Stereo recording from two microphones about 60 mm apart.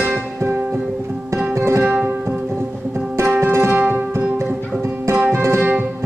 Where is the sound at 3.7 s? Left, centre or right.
Right.